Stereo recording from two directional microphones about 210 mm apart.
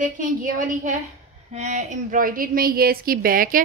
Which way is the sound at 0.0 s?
40° right (ahead or behind).